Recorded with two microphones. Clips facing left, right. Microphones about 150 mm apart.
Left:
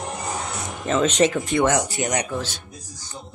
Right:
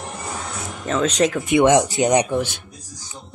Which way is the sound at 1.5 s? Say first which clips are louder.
Right 5 dB; 20° right (ahead or behind).